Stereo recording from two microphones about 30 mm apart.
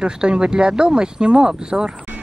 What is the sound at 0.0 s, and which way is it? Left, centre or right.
Speech, right.